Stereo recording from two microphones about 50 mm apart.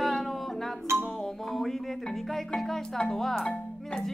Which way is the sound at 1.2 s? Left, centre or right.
Centre.